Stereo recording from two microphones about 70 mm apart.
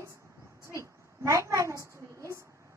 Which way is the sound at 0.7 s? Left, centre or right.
Right.